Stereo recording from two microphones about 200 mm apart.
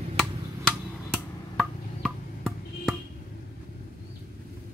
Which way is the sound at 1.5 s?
Centre (ahead or behind).